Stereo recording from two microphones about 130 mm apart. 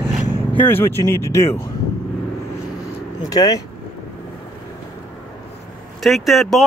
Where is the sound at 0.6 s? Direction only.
15° left (ahead or behind).